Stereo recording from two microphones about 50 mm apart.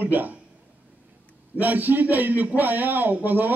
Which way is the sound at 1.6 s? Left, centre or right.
Right.